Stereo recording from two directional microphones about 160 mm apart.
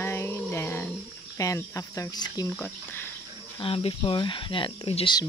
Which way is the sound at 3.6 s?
35° left (ahead or behind).